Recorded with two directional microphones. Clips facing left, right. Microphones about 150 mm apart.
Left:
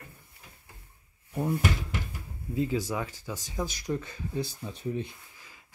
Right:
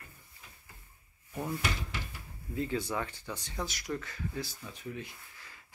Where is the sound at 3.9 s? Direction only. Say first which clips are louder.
Left 5 dB; 20° left (ahead or behind).